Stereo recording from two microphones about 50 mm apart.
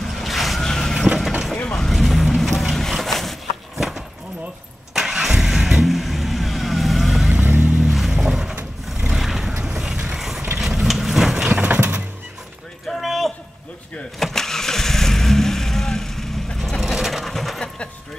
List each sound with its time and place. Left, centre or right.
0.0 s vehicle: centre
0.9 s vehicle: centre
1.8 s vehicle: centre
4.9 s vehicle: centre
7.6 s vehicle: centre
7.9 s vehicle: centre
11.3 s clip-clop: centre
12.8 s a sound: centre
14.2 s vehicle: centre
16.8 s a sound: centre